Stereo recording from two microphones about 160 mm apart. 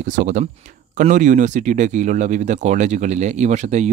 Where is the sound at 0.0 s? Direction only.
50° right (ahead or behind).